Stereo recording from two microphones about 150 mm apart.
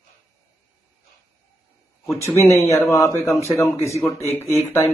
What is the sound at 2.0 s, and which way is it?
A man's voice, 20° left (ahead or behind).